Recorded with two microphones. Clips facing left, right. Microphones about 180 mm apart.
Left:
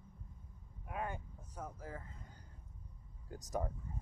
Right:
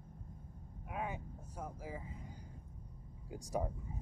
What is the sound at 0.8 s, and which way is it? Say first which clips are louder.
Vehicle: even; 5° right (ahead or behind).